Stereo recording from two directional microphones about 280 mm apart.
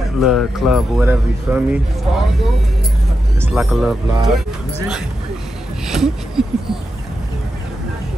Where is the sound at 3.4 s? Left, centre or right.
Centre.